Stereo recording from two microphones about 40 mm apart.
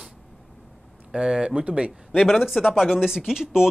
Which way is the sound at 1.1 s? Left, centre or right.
Centre.